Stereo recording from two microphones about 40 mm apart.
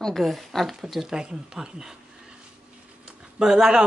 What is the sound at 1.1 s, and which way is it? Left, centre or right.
Speech, centre.